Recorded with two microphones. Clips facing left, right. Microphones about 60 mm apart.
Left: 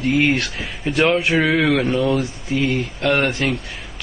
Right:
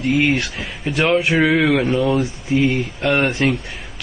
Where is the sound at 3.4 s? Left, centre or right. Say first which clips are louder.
Right 3 dB; centre.